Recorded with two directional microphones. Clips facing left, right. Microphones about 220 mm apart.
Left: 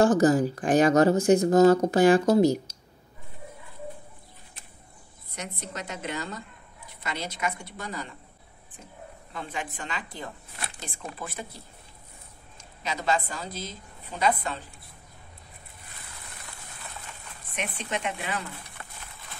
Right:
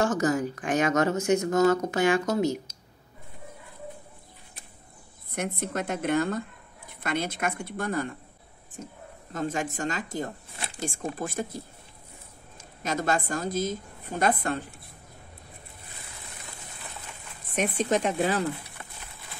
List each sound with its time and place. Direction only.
0.0 s speech: 35° left (ahead or behind)
5.3 s a woman's voice: 55° right (ahead or behind)
9.3 s a woman's voice: 45° right (ahead or behind)
12.8 s a woman's voice: 50° right (ahead or behind)
17.6 s speech: 40° right (ahead or behind)